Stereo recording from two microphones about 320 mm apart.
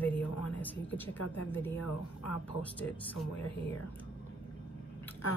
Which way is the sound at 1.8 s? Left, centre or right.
Left.